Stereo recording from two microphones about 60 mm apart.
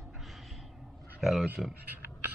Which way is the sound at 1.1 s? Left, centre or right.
Centre.